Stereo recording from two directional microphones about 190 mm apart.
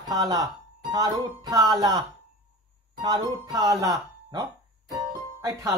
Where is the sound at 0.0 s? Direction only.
20° right (ahead or behind).